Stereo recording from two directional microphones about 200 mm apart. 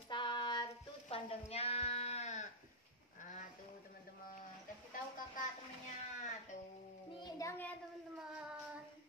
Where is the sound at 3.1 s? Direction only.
40° left (ahead or behind).